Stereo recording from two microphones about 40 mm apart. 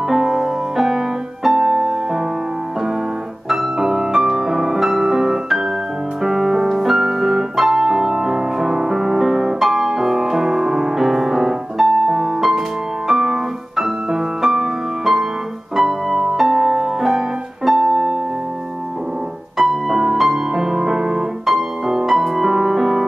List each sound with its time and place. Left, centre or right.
0.1 s music: centre
1.6 s music: centre
3.4 s music: centre
6.2 s piano: centre
7.8 s music: centre
19.5 s music: centre